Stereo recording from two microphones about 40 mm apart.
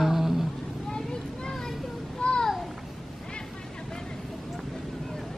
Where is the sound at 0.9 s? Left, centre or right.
Centre.